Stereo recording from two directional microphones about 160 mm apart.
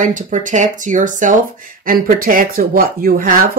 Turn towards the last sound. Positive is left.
turn(degrees=-60)  # may be behind; listen again after turning